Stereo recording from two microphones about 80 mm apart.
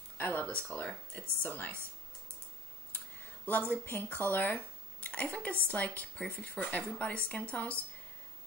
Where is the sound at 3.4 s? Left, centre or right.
Left.